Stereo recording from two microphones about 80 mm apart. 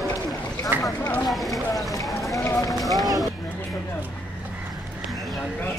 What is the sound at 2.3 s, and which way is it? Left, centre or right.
Run, left.